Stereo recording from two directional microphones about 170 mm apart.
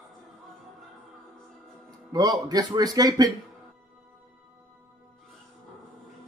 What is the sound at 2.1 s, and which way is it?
A man's voice, 25° right (ahead or behind).